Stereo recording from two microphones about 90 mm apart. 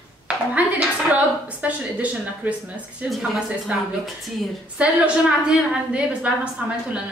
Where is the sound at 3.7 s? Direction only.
15° right (ahead or behind).